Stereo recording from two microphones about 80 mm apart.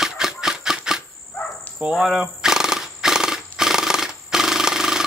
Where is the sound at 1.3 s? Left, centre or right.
Left.